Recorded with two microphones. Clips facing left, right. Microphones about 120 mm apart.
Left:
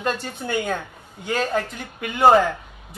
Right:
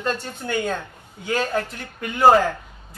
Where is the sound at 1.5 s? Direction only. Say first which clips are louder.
Left 1 dB; 10° left (ahead or behind).